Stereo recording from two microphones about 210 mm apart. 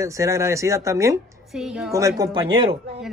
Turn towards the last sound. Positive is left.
turn(degrees=-20)  # may be behind; listen again after turning